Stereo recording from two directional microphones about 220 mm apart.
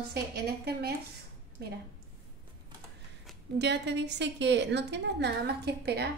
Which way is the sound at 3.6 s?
50° right (ahead or behind).